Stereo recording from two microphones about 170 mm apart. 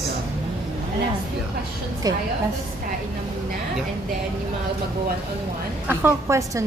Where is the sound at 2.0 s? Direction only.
20° right (ahead or behind).